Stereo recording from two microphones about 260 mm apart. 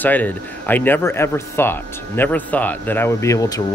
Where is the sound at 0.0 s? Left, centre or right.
Centre.